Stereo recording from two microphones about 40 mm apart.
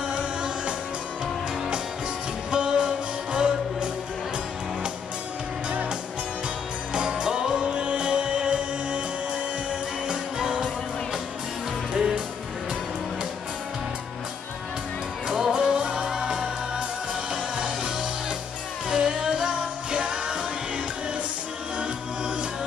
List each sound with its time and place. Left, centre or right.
0.1 s music: right
2.5 s music: right
5.7 s music: right
6.9 s music: right
11.9 s music: centre
15.2 s music: centre
15.8 s music: right
16.1 s music: centre
18.9 s music: centre